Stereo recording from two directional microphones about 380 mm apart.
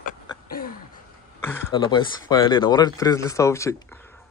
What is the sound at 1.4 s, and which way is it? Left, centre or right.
Speech, centre.